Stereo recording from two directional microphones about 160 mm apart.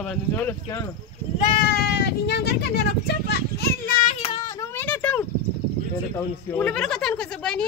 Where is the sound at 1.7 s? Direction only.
85° left; by 4.1 s 70° left (ahead or behind).